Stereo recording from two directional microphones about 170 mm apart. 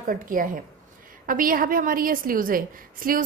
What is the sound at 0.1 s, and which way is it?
A woman's voice, 55° right (ahead or behind).